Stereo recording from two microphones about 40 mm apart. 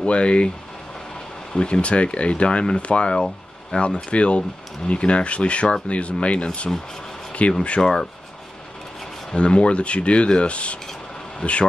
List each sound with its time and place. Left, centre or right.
0.0 s speech: left
1.6 s speech: left
7.8 s speech: centre
9.3 s speech: left